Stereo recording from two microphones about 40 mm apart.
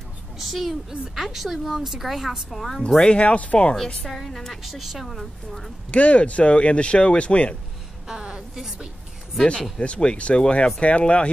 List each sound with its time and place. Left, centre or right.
0.4 s a woman's voice: centre
3.0 s speech: left
4.0 s a woman's voice: centre
4.6 s a woman's voice: centre
5.9 s speech: left
8.1 s a sound: centre
9.8 s speech: left